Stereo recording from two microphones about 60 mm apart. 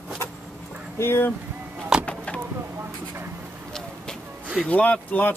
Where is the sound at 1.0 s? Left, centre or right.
Left.